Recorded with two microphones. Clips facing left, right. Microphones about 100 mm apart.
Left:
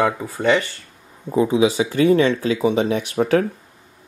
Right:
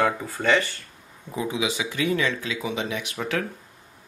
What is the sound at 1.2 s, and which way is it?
Speech, 35° left (ahead or behind).